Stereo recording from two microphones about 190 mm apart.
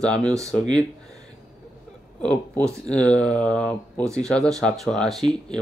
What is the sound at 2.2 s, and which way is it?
Speech, 5° left (ahead or behind).